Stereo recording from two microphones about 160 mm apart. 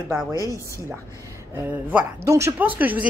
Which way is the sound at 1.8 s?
15° right (ahead or behind).